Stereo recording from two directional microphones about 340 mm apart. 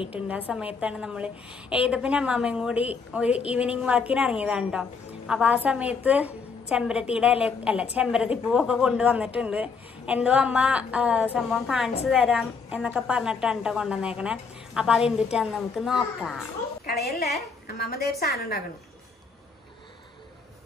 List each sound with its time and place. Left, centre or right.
0.1 s a woman's voice: centre
17.6 s a woman's voice: left